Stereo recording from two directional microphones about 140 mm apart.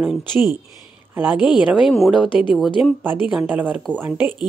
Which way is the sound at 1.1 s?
10° right (ahead or behind).